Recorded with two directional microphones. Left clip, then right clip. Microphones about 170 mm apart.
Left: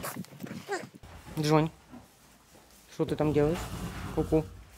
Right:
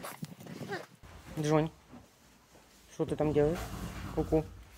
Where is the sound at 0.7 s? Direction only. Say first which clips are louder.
Left 5 dB; 20° left (ahead or behind).